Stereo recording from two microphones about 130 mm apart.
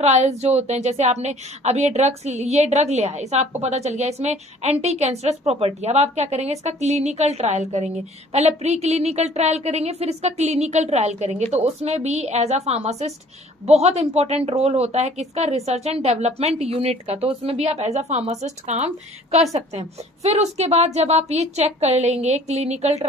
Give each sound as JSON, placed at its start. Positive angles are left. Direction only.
{"t": 0.0, "sound": "a woman's voice", "side_deg": -60}